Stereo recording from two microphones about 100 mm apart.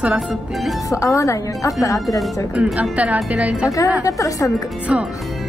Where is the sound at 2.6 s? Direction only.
15° right (ahead or behind).